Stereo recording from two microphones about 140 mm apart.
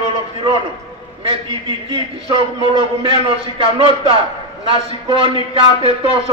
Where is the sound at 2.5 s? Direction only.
40° right (ahead or behind).